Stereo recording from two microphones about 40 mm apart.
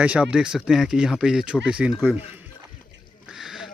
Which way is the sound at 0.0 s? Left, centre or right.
Right.